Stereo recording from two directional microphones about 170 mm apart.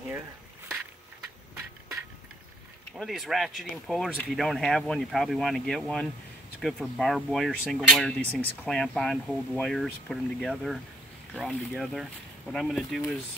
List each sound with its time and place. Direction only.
3.0 s speech: centre (ahead or behind)